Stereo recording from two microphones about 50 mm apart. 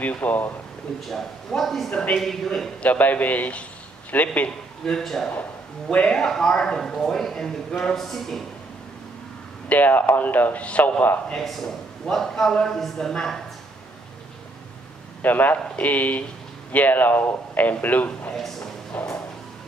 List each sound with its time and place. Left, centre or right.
0.0 s a man's voice: left
0.9 s a man's voice: centre
2.8 s a man's voice: left
4.8 s a man's voice: centre
5.9 s speech: left
6.1 s a man's voice: centre
9.7 s a man's voice: left
11.3 s a man's voice: centre
15.2 s a man's voice: left
18.3 s a sound: centre
18.9 s a sound: left